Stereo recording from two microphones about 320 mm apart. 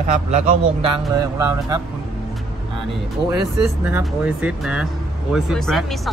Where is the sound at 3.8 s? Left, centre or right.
Centre.